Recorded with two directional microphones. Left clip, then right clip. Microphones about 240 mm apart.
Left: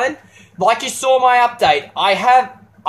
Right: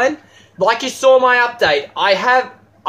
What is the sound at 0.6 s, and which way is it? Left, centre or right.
Speech, centre.